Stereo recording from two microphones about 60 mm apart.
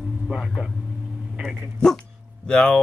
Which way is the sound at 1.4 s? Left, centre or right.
Centre.